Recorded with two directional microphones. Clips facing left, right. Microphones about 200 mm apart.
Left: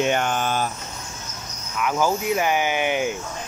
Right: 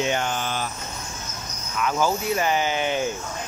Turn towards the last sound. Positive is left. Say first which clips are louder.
# left 2 dB
turn(degrees=15)  # may be behind; listen again after turning